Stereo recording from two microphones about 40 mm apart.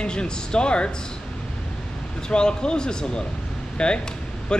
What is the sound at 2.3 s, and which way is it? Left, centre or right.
Speech, left.